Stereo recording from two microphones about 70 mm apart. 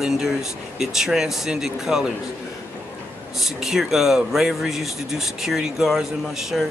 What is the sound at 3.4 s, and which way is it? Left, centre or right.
Speech, centre.